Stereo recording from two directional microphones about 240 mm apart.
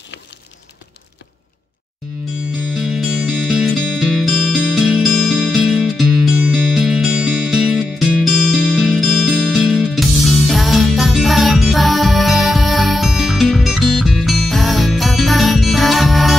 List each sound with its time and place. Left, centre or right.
2.7 s music: centre